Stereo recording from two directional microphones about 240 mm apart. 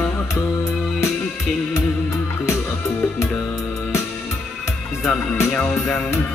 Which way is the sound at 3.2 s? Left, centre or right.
Centre.